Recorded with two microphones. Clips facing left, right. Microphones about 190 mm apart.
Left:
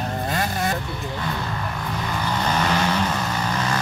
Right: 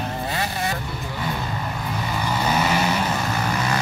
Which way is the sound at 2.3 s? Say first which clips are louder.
Right 1 dB; 10° right (ahead or behind).